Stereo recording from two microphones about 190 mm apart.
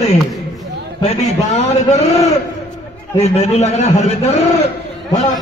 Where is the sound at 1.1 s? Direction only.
35° left (ahead or behind).